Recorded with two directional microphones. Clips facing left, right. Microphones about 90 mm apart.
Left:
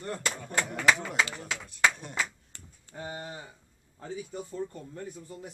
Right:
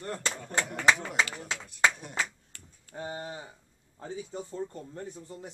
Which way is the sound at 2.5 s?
25° left (ahead or behind).